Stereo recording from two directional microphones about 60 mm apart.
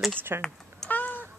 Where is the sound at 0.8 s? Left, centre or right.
Left.